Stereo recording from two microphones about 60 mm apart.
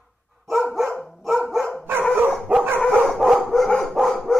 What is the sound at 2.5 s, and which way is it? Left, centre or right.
Dog, right.